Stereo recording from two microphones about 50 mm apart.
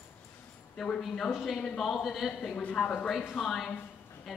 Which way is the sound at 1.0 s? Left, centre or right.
Centre.